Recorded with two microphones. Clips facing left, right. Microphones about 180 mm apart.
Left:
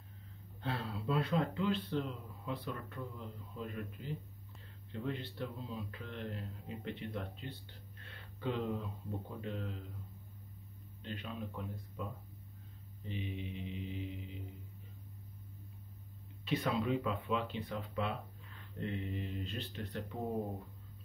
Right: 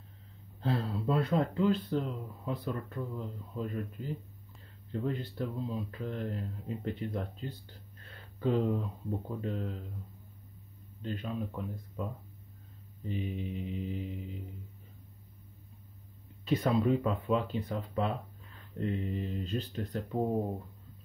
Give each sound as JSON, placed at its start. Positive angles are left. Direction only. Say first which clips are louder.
{"t": 0.6, "sound": "speech", "louder": "right 7 dB", "side_deg": -35}
{"t": 8.0, "sound": "a sound", "louder": "right 8 dB", "side_deg": -40}
{"t": 9.4, "sound": "speech", "louder": "right 6 dB", "side_deg": -40}
{"t": 11.0, "sound": "speech", "louder": "right 7 dB", "side_deg": -40}
{"t": 16.4, "sound": "speech", "louder": "right 6 dB", "side_deg": -45}